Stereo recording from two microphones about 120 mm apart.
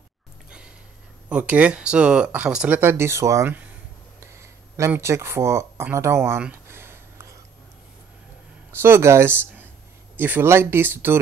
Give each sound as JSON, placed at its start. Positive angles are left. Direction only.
{"t": 1.3, "sound": "speech", "side_deg": -10}
{"t": 6.7, "sound": "a sound", "side_deg": -20}
{"t": 8.8, "sound": "speech", "side_deg": -20}